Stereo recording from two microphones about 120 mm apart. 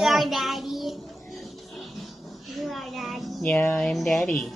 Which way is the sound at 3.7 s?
5° left (ahead or behind).